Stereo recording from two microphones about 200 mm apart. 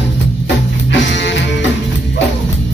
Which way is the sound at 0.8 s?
60° left (ahead or behind).